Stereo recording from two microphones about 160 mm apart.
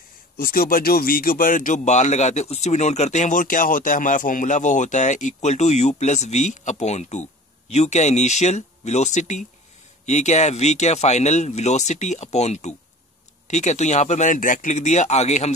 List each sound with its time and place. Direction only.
0.4 s speech: 65° left (ahead or behind); by 15.5 s 45° left (ahead or behind)